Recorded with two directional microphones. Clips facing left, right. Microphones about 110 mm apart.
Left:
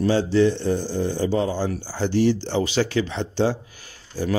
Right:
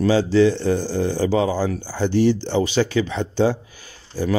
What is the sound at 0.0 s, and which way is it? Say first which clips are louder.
A man's voice: right 3 dB; 90° right.